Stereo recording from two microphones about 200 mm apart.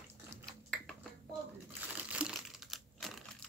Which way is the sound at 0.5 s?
5° left (ahead or behind).